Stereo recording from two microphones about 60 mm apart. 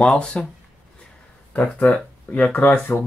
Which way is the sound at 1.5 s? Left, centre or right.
Left.